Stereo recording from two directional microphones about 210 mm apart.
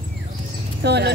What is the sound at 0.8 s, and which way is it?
Speech, 50° right (ahead or behind).